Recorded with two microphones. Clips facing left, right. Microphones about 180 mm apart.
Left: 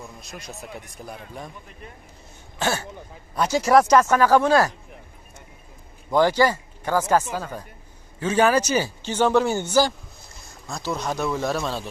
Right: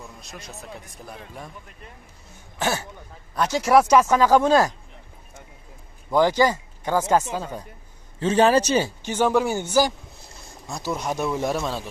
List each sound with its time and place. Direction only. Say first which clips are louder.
0.9 s speech: left 2 dB; centre (ahead or behind)
2.6 s speech: even; 15° right (ahead or behind)
3.3 s speech: even; centre (ahead or behind); by 4.7 s 15° right (ahead or behind)
6.1 s speech: even; 15° right (ahead or behind)
8.2 s a man's voice: right 2 dB; 30° right (ahead or behind)
8.8 s speech: left 1 dB; 15° right (ahead or behind)